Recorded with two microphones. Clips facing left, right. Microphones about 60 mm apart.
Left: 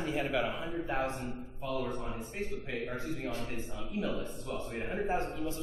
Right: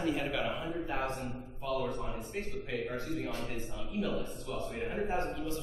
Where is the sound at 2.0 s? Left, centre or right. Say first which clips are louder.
Even; centre.